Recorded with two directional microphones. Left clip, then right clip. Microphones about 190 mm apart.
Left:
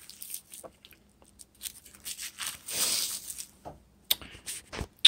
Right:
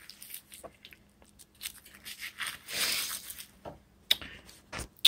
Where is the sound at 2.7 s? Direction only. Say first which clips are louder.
Even; 20° left (ahead or behind).